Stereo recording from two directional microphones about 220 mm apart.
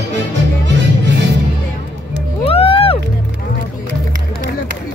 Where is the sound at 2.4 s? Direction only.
25° left (ahead or behind).